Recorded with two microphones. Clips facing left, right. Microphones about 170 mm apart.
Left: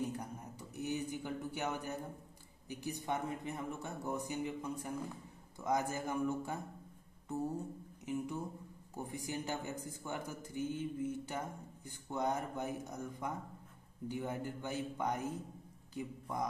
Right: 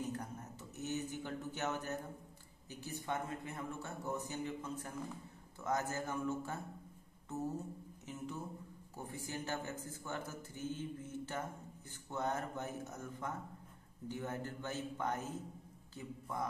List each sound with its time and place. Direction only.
0.1 s a sound: 10° left (ahead or behind)
2.7 s a man's voice: 15° left (ahead or behind)
8.0 s a man's voice: 15° left (ahead or behind)